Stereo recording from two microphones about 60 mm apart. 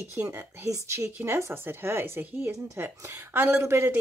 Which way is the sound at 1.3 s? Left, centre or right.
Right.